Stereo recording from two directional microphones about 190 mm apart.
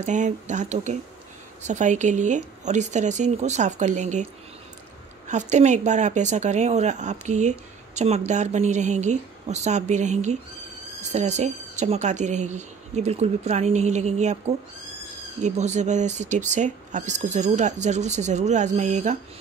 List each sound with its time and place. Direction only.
0.0 s speech: 40° right (ahead or behind)
5.3 s speech: 40° right (ahead or behind)
15.4 s speech: 35° right (ahead or behind)